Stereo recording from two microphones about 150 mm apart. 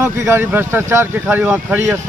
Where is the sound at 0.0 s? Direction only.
15° right (ahead or behind).